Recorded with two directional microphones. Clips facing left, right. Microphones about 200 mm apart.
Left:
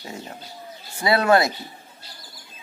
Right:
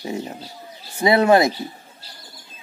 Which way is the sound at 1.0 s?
20° right (ahead or behind).